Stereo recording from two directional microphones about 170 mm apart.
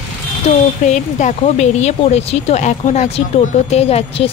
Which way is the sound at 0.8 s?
45° left (ahead or behind).